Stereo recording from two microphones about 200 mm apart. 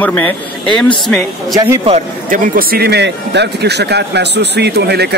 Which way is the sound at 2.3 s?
50° right (ahead or behind).